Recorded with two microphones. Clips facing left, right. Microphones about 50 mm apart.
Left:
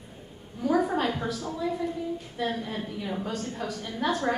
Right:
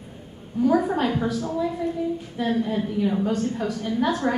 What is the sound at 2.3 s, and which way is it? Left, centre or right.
A woman's voice, centre.